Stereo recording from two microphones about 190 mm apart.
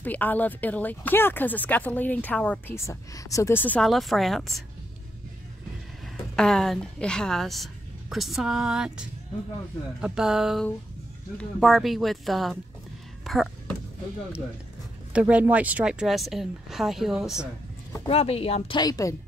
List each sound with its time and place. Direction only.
0.0 s speech: 10° left (ahead or behind)
6.3 s a woman's voice: 5° left (ahead or behind)
10.0 s a woman's voice: 5° right (ahead or behind)
13.2 s a sound: centre (ahead or behind)
15.1 s a woman's voice: 5° right (ahead or behind)
18.0 s speech: 30° left (ahead or behind)